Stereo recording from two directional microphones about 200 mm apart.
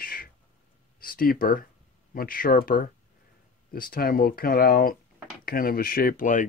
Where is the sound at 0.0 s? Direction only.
45° left (ahead or behind).